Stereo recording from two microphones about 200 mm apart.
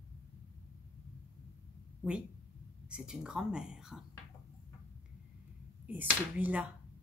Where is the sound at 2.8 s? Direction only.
5° right (ahead or behind).